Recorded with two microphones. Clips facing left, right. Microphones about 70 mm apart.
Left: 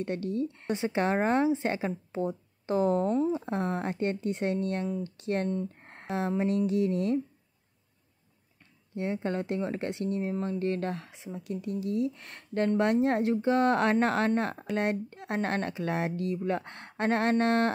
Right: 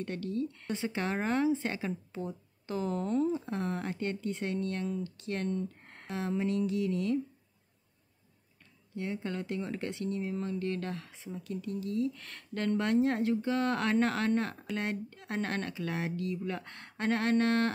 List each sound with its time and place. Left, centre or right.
0.0 s speech: left
8.9 s speech: left